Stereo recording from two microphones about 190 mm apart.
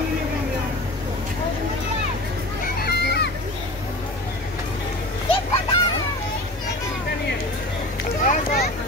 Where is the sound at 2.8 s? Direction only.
60° left (ahead or behind).